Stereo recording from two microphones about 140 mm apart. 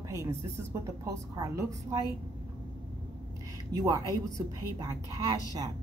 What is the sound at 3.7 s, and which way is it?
A woman's voice, 30° right (ahead or behind).